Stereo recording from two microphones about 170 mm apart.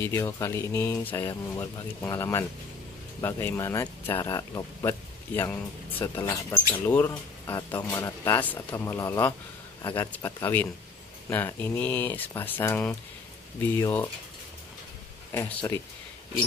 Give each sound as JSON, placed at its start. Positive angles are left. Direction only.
{"t": 0.0, "sound": "speech", "side_deg": 15}
{"t": 15.3, "sound": "speech", "side_deg": 15}